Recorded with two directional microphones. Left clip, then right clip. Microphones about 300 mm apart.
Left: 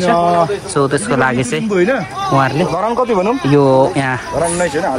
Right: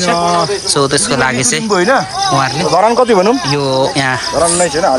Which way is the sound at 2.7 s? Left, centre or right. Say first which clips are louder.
Right 9 dB; right.